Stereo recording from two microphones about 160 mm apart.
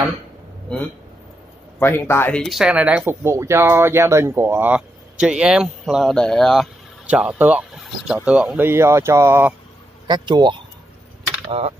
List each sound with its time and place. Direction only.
1.8 s speech: 15° left (ahead or behind)
2.4 s speech: 5° right (ahead or behind)
10.0 s speech: 30° right (ahead or behind)